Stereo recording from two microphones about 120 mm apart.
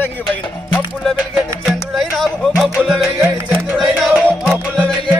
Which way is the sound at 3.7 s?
Centre (ahead or behind).